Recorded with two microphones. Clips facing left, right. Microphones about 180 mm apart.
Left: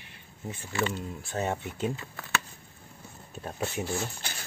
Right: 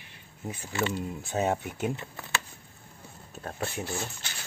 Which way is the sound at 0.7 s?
15° right (ahead or behind).